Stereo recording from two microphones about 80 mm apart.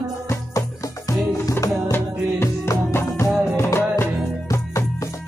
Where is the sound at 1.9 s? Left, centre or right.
Left.